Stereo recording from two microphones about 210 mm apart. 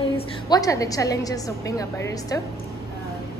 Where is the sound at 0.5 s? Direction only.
15° left (ahead or behind).